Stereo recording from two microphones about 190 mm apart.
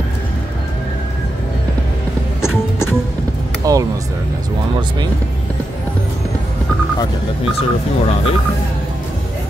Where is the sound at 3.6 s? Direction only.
20° right (ahead or behind).